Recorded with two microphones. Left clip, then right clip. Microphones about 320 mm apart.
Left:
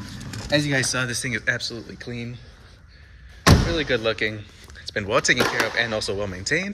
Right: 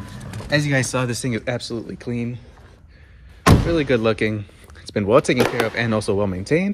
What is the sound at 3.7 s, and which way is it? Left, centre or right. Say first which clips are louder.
Speech: right 4 dB; centre.